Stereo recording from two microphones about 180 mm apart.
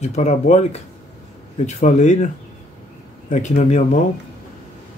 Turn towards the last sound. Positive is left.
turn(degrees=40)  # may be behind; listen again after turning